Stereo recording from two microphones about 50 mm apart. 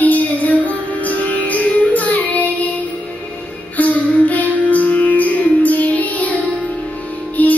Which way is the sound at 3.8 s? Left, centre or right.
Left.